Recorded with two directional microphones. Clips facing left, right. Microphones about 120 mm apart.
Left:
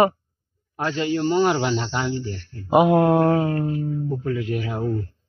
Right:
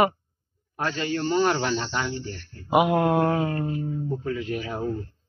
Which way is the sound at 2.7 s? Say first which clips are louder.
Left 4 dB; 30° left (ahead or behind).